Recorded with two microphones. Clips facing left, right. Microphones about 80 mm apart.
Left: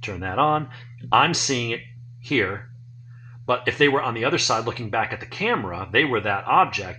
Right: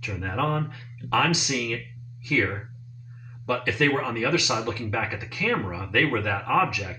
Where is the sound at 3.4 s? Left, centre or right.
Left.